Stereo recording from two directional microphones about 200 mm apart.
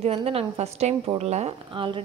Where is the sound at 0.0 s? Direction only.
30° right (ahead or behind).